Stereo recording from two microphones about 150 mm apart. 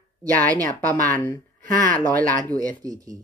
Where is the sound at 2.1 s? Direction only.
10° left (ahead or behind).